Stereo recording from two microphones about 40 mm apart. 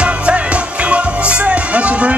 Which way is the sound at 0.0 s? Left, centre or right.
Right.